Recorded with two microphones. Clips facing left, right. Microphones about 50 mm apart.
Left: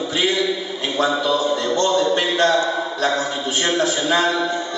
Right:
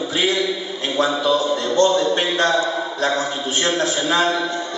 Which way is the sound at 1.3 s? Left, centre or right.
Centre.